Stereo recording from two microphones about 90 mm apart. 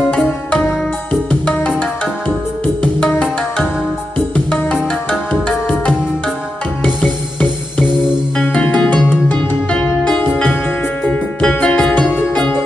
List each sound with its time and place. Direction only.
1.3 s music: 15° left (ahead or behind)
2.8 s music: 15° left (ahead or behind)
5.3 s music: 10° left (ahead or behind)
8.4 s music: 15° left (ahead or behind)